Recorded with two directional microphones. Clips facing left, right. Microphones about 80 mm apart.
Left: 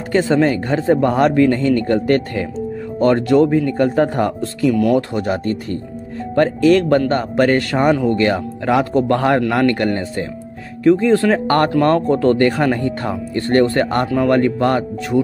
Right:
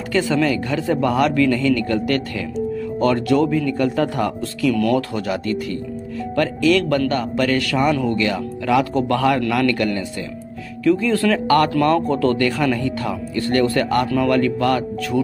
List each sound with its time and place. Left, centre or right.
0.1 s a man's voice: left
7.9 s a man's voice: left
8.2 s a man's voice: left